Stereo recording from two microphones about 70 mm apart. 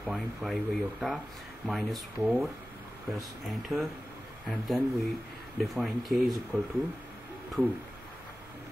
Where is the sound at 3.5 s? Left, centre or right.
Centre.